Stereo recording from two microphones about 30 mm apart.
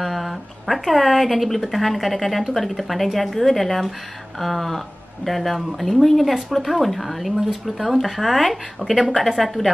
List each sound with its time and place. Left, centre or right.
0.0 s speech: centre
8.8 s speech: centre
9.4 s speech: centre